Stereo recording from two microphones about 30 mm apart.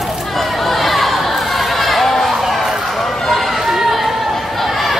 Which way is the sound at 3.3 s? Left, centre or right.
Centre.